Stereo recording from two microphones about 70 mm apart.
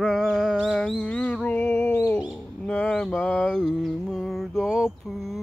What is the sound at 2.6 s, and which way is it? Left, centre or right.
Mantra, centre.